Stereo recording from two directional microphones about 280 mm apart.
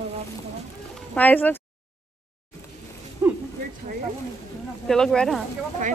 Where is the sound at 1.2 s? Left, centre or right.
Centre.